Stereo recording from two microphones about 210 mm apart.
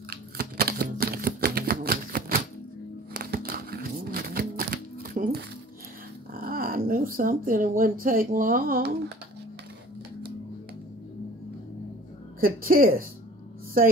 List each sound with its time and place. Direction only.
0.1 s typewriter: 45° right (ahead or behind)
3.1 s music: 45° right (ahead or behind)
6.3 s speech: 45° right (ahead or behind)
12.4 s speech: 45° right (ahead or behind)